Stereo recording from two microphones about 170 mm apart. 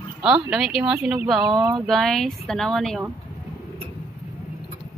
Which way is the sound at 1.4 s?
25° right (ahead or behind).